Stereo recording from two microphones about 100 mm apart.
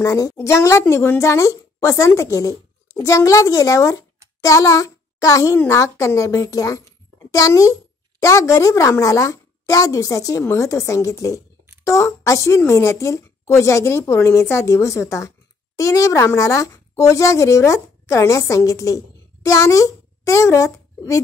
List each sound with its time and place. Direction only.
0.0 s a woman's voice: 35° left (ahead or behind)